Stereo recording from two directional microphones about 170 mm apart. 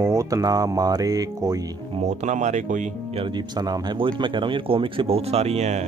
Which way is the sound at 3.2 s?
25° right (ahead or behind).